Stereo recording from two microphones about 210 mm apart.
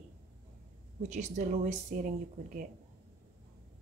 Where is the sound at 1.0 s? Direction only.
35° right (ahead or behind).